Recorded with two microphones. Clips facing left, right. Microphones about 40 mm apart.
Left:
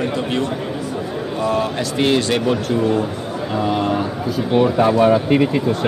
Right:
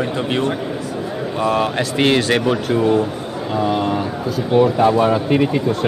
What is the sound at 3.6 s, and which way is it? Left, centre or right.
A man's voice, centre.